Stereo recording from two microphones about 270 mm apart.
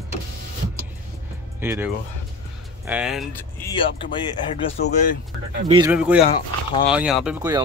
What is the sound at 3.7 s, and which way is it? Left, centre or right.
Speech, centre.